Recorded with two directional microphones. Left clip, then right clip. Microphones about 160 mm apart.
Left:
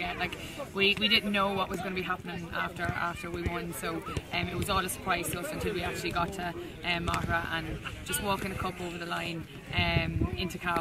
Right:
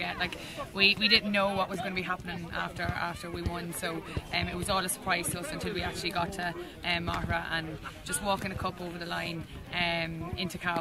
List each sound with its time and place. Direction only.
0.7 s speech: 15° right (ahead or behind)